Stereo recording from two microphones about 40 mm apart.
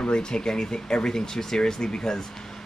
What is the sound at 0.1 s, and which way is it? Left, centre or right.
Speech, centre.